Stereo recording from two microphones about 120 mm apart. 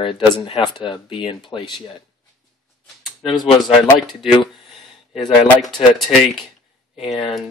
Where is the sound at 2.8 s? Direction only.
Centre (ahead or behind).